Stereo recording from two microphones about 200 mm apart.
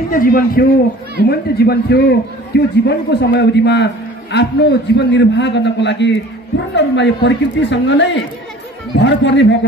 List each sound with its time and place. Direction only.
0.1 s a man's voice: 45° left (ahead or behind); by 9.7 s 60° left (ahead or behind)